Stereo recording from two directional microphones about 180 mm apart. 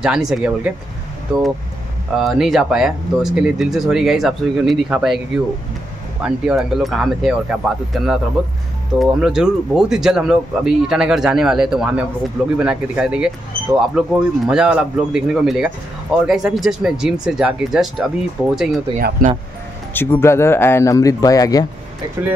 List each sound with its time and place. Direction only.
0.0 s speech: 5° right (ahead or behind)
2.1 s speech: centre (ahead or behind)
6.2 s speech: centre (ahead or behind)
18.9 s speech: 50° right (ahead or behind)
19.9 s speech: 10° left (ahead or behind)